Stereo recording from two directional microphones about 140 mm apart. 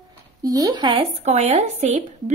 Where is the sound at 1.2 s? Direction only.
50° right (ahead or behind).